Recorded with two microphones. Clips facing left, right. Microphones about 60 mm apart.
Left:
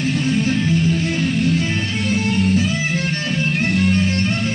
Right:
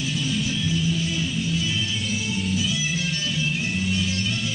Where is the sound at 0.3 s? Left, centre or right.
Left.